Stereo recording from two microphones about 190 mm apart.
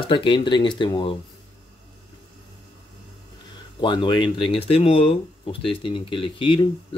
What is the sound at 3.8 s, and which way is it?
Speech, 25° left (ahead or behind).